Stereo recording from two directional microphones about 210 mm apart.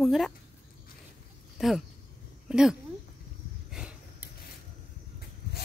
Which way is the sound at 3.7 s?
5° right (ahead or behind).